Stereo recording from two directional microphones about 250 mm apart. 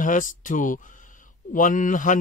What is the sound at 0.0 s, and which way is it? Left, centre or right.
Speech, left.